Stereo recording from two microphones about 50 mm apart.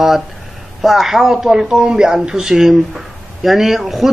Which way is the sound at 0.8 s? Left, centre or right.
Centre.